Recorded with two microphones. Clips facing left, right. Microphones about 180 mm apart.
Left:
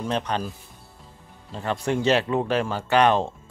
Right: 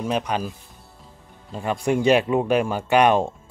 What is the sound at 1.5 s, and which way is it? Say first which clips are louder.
Speech: right 3 dB; 10° right (ahead or behind).